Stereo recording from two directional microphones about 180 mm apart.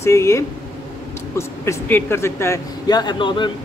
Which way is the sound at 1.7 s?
10° left (ahead or behind).